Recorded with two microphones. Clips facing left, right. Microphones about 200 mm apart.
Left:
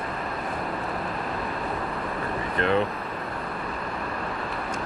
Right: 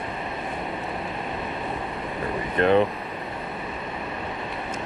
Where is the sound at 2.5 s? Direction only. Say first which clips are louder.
Right 5 dB; 20° right (ahead or behind).